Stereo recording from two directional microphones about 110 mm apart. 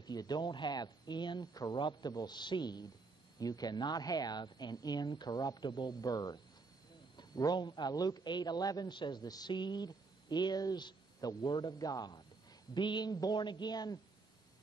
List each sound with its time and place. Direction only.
0.0 s a man's voice: 40° left (ahead or behind)